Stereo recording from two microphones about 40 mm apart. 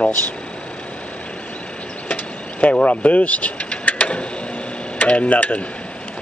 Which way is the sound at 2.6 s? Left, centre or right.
Left.